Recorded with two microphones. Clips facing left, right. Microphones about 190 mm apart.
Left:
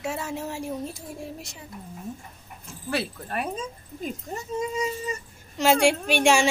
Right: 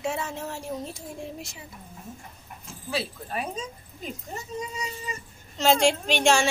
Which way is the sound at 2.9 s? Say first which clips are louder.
Left 2 dB; 60° left (ahead or behind).